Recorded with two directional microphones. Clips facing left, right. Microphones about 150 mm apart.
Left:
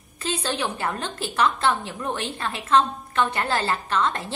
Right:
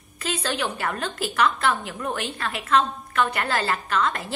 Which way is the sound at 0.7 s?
25° left (ahead or behind).